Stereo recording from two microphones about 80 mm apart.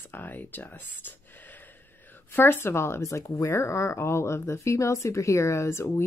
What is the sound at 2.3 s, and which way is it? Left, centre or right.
Speech, left.